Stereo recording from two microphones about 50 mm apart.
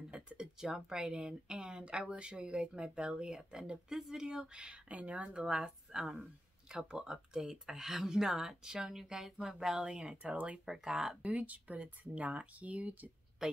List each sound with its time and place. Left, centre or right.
0.1 s a sound: right
0.6 s a woman's voice: centre
5.6 s a woman's voice: centre; by 10.6 s right
10.6 s a woman's voice: centre
11.2 s speech: right
13.4 s a woman's voice: centre